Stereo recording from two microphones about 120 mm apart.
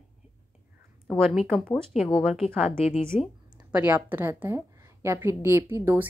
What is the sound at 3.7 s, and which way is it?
A woman's voice, 15° right (ahead or behind).